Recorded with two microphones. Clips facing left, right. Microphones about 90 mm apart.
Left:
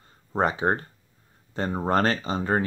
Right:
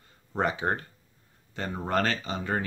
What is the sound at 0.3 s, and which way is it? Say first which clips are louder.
Speech: left 4 dB; 35° left (ahead or behind).